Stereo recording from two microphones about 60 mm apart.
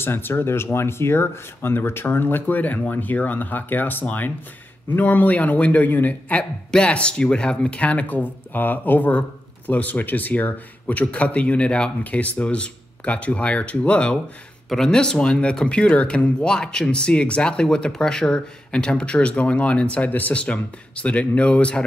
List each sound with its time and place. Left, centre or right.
0.0 s speech: left
6.7 s speech: centre